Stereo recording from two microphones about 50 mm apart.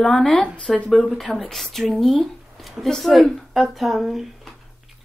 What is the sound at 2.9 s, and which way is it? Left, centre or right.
Speech, centre.